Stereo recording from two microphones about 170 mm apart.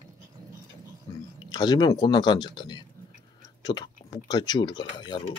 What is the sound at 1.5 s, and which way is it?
Speech, 25° left (ahead or behind).